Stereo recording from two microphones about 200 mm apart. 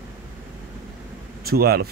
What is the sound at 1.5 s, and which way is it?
Speech, 50° right (ahead or behind).